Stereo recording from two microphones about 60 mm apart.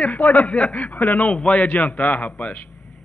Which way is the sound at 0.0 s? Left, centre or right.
Left.